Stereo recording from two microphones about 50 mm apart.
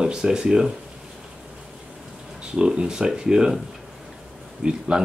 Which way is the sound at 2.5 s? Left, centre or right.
Centre.